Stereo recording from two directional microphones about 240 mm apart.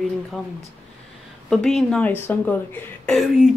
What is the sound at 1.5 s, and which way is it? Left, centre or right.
Speech, centre.